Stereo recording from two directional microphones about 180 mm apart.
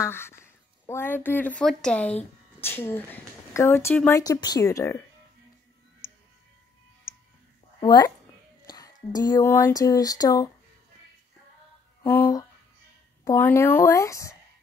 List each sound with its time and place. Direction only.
0.0 s a sound: 15° left (ahead or behind)
1.6 s speech: 5° left (ahead or behind)
4.2 s speech: 20° left (ahead or behind)
7.8 s a woman's voice: 25° left (ahead or behind)
12.0 s a sound: 10° left (ahead or behind)
13.2 s speech: 15° left (ahead or behind)